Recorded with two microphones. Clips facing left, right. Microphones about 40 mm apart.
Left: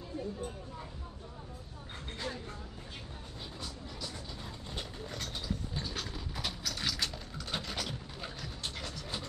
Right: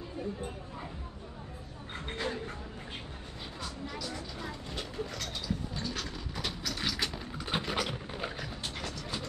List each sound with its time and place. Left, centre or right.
2.0 s speech: right
4.4 s vehicle: right
5.9 s a sound: centre; by 8.5 s right